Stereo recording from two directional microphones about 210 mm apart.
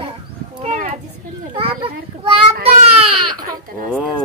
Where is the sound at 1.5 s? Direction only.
25° right (ahead or behind).